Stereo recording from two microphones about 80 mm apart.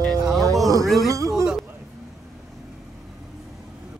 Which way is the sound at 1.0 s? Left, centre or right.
Right.